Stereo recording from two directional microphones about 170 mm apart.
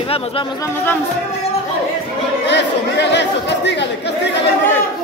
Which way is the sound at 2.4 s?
85° left.